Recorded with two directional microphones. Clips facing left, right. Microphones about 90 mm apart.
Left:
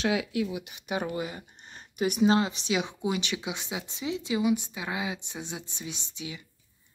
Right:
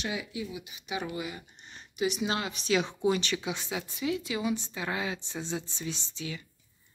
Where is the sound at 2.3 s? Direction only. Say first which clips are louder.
Left 5 dB; 30° left (ahead or behind).